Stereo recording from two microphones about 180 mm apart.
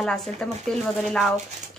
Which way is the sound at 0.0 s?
Centre (ahead or behind).